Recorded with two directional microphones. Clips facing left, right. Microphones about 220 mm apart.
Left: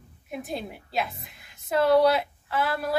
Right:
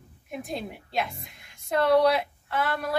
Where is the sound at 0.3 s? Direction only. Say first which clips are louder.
Even; centre (ahead or behind).